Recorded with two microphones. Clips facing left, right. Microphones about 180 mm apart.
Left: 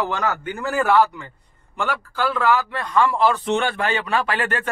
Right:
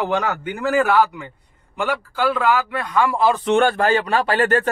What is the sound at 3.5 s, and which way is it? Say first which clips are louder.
Speech: right 5 dB; 50° right (ahead or behind).